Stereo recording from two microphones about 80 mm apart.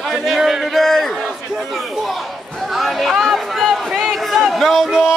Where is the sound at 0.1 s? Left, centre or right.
Centre.